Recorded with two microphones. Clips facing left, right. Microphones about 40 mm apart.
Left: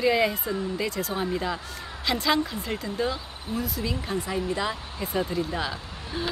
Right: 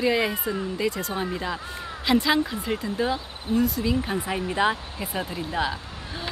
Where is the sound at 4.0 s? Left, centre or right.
Centre.